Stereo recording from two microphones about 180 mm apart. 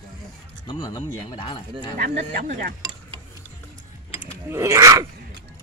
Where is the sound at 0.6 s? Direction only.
20° left (ahead or behind).